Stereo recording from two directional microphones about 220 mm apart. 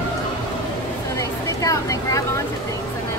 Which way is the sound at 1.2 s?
15° left (ahead or behind).